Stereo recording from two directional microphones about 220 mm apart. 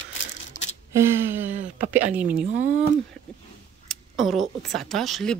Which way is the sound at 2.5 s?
35° right (ahead or behind).